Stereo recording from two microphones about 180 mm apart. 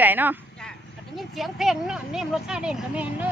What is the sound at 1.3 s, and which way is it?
Speech, centre (ahead or behind).